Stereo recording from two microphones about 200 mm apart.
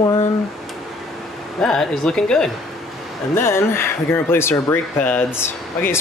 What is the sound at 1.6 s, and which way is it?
Speech, centre (ahead or behind).